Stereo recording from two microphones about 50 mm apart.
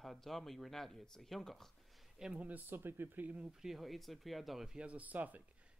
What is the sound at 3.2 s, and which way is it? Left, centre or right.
Speech, right.